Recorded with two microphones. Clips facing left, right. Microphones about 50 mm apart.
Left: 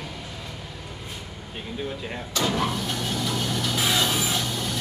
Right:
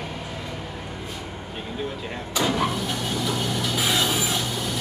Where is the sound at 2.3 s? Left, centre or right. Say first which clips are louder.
Right 2 dB; centre.